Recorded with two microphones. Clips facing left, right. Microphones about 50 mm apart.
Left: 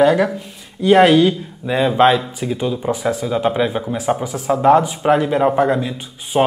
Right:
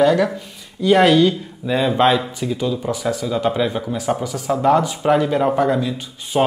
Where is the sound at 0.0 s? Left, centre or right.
Centre.